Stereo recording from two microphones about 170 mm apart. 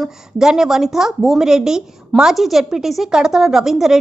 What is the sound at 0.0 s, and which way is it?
A woman's voice, 5° right (ahead or behind).